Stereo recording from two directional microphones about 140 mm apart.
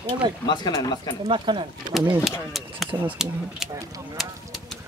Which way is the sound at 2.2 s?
Centre (ahead or behind).